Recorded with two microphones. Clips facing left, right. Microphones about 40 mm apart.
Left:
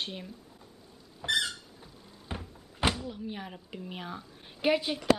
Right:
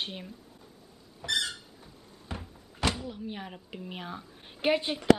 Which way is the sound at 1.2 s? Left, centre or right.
Left.